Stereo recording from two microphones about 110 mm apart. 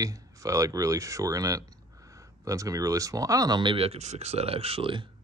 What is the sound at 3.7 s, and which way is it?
Speech, 65° right (ahead or behind).